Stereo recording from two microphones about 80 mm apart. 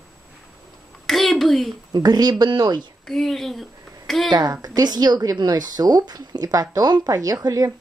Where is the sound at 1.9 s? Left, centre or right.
Right.